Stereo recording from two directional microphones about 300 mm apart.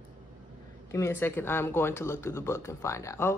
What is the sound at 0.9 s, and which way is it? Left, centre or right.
Speech, centre.